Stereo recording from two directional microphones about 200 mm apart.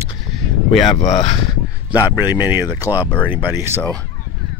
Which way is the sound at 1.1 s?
25° left (ahead or behind).